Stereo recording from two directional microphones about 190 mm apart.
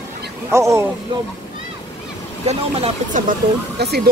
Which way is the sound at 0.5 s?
15° right (ahead or behind).